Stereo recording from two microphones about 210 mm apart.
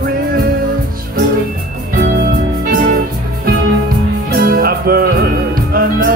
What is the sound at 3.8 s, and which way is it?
Music, 45° right (ahead or behind).